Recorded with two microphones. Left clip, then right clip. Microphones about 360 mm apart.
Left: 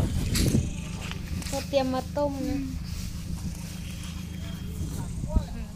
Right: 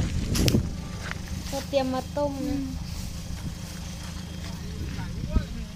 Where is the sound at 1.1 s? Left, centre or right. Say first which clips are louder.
Right 2 dB; centre.